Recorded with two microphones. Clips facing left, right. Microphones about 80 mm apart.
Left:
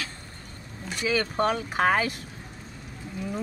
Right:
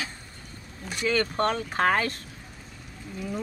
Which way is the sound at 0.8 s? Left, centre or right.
Centre.